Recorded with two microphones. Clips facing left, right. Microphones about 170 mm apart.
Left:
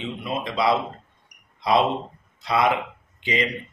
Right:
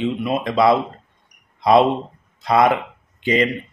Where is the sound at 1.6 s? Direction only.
50° right (ahead or behind).